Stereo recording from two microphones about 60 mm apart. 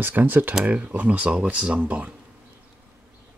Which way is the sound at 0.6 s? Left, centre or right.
Right.